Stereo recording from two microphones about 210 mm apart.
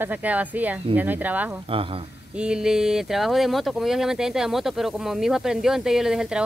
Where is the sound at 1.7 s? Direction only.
25° right (ahead or behind).